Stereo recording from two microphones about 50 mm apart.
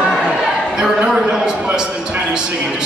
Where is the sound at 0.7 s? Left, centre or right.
Centre.